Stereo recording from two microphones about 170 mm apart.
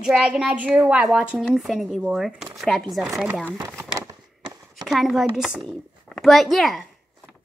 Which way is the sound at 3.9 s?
20° right (ahead or behind).